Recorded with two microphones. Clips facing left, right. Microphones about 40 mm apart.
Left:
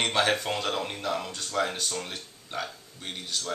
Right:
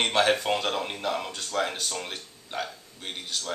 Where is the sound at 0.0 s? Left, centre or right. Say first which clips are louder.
Right 2 dB; centre.